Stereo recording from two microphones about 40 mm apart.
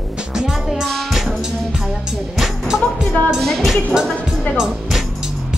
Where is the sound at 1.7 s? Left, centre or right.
Centre.